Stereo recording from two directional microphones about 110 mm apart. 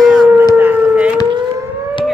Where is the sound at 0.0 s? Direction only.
Centre (ahead or behind).